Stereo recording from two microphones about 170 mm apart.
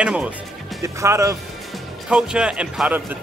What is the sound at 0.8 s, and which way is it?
Speech, 15° right (ahead or behind).